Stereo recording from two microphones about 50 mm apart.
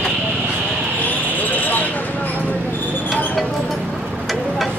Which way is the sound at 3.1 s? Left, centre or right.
Centre.